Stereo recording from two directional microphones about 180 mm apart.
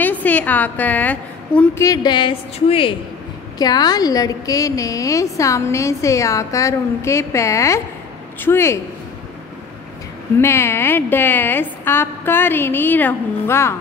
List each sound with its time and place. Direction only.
0.0 s a woman's voice: 10° left (ahead or behind)
1.9 s a woman's voice: 25° left (ahead or behind)
10.4 s a woman's voice: 15° left (ahead or behind)